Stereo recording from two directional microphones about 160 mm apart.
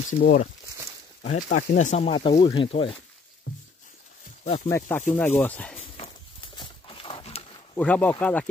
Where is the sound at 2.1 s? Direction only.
35° left (ahead or behind).